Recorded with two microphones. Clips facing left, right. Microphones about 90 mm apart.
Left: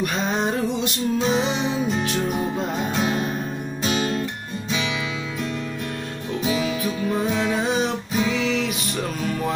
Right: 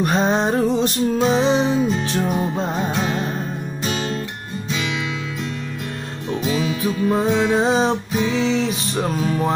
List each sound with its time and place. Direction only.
0.0 s music: 35° right (ahead or behind)
3.0 s music: 10° left (ahead or behind)
6.8 s music: 30° right (ahead or behind)